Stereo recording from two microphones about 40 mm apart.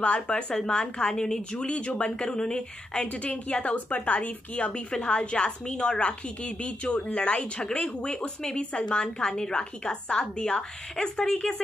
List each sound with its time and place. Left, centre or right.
0.0 s a woman's voice: left
3.1 s a woman's voice: left
4.9 s a woman's voice: left